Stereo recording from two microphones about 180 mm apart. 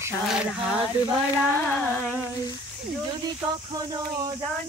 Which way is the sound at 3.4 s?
20° right (ahead or behind).